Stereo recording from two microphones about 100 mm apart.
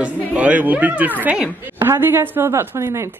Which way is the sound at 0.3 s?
15° right (ahead or behind).